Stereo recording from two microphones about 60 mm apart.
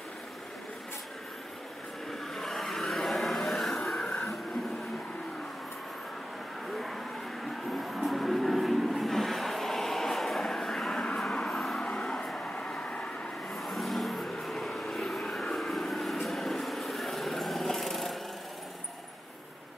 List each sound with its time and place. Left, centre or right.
2.0 s vehicle: centre
7.4 s train: centre
11.8 s vehicle: centre
13.5 s vehicle: centre